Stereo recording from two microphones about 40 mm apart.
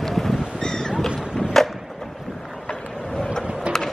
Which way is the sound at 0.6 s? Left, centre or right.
Centre.